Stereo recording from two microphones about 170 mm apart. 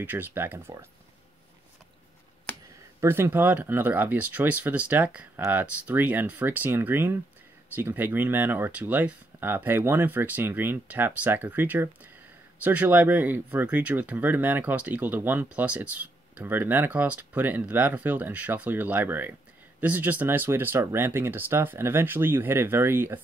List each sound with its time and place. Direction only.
0.0 s speech: 10° right (ahead or behind)
3.0 s speech: 15° right (ahead or behind)